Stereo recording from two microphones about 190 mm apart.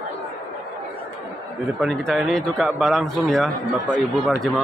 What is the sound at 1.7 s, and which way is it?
A man's voice, centre (ahead or behind).